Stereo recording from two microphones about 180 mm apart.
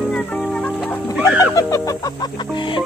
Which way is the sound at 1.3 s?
20° left (ahead or behind).